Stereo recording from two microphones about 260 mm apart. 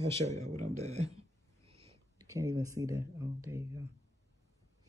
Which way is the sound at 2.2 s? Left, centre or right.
Centre.